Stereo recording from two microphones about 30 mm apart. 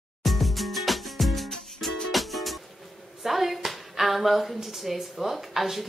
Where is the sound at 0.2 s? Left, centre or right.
Centre.